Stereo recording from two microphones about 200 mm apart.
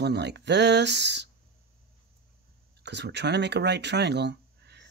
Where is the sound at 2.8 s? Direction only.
60° right (ahead or behind).